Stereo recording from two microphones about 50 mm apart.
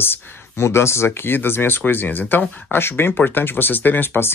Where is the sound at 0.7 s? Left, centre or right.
Left.